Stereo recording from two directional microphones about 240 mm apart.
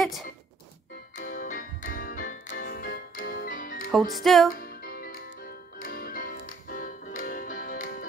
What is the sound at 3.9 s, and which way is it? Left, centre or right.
Speech, centre.